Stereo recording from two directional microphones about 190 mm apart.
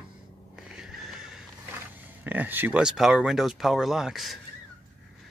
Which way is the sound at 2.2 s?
10° right (ahead or behind).